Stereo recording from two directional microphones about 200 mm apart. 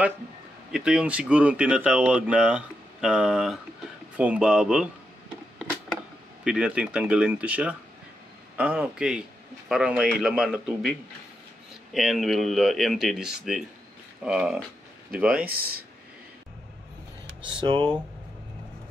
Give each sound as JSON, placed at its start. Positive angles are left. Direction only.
{"t": 0.7, "sound": "speech", "side_deg": -5}
{"t": 6.4, "sound": "speech", "side_deg": -5}
{"t": 15.4, "sound": "speech", "side_deg": -50}
{"t": 17.6, "sound": "speech", "side_deg": -25}